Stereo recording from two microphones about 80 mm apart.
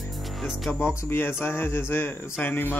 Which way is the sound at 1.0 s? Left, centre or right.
Left.